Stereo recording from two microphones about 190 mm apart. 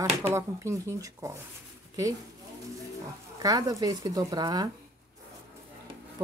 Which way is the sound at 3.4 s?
20° right (ahead or behind).